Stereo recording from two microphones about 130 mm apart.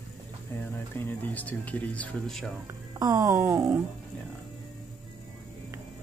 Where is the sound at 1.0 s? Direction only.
15° left (ahead or behind).